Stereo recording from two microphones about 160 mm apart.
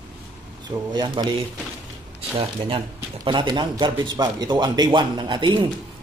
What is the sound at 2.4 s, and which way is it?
A man's voice, 35° right (ahead or behind).